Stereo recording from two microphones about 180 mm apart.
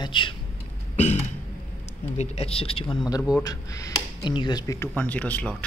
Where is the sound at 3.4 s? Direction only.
20° left (ahead or behind).